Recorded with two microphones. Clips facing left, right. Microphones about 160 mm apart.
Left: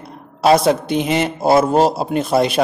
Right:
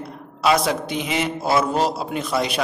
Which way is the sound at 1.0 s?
55° left (ahead or behind).